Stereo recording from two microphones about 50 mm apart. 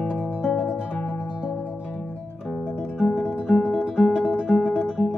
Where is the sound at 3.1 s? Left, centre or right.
Centre.